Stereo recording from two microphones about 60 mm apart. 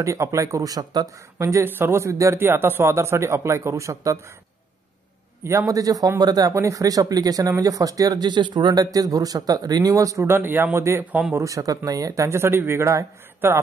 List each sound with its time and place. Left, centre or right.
0.0 s speech: right
1.6 s speech: right
2.3 s speech: right
5.4 s a man's voice: right
5.7 s speech: right
6.5 s speech: right
7.6 s speech: right
8.7 s speech: right
10.2 s a man's voice: right
11.3 s speech: right
12.3 s speech: right
13.4 s a man's voice: right